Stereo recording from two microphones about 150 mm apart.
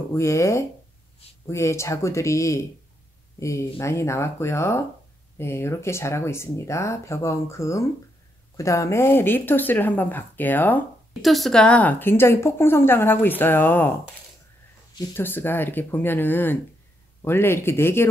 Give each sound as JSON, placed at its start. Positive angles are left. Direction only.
{"t": 0.1, "sound": "a woman's voice", "side_deg": 20}
{"t": 11.1, "sound": "a woman's voice", "side_deg": 0}
{"t": 15.1, "sound": "a woman's voice", "side_deg": 15}